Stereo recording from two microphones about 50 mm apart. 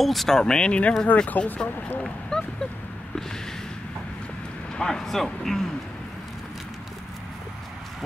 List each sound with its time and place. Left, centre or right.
0.0 s speech: centre; by 1.7 s left
2.3 s a sound: centre
4.7 s speech: centre